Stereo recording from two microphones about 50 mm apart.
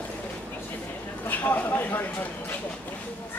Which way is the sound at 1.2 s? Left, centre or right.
Left.